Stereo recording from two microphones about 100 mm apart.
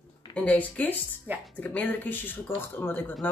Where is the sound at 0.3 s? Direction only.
15° left (ahead or behind).